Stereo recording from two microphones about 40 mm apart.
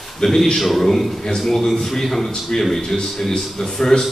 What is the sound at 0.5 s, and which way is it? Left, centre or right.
A man's voice, centre.